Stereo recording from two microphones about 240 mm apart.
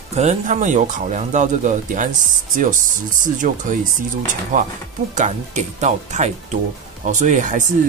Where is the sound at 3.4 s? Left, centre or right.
Right.